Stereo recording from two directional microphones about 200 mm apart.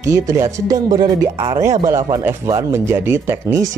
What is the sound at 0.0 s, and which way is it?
A man's voice, 15° right (ahead or behind).